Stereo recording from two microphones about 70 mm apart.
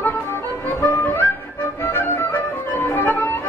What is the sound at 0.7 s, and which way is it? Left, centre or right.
Music, left.